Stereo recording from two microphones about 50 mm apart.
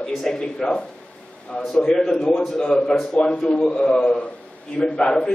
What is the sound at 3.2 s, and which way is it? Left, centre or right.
A man's voice, left.